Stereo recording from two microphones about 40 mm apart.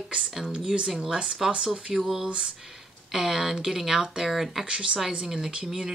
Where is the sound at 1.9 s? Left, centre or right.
Centre.